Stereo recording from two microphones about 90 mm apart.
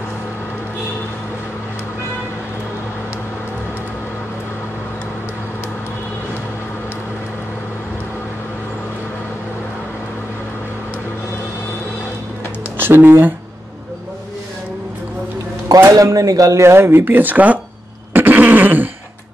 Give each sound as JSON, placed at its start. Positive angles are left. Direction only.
{"t": 12.7, "sound": "a sound", "side_deg": -25}
{"t": 15.9, "sound": "speech", "side_deg": -40}
{"t": 18.1, "sound": "fart", "side_deg": -20}